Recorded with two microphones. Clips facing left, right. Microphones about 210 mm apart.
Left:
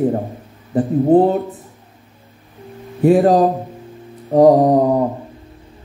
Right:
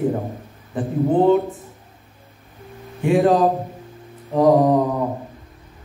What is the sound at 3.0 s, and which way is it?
Speech, 45° left (ahead or behind).